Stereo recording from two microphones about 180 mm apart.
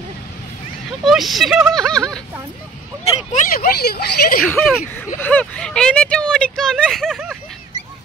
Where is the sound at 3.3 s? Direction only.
55° left (ahead or behind).